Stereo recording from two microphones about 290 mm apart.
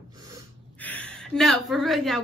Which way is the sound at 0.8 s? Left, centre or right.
Centre.